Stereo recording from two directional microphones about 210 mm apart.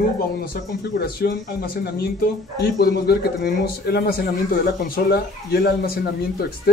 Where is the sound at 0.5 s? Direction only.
45° left (ahead or behind).